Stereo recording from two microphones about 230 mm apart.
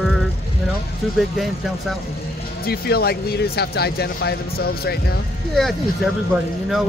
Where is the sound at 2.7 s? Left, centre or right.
Left.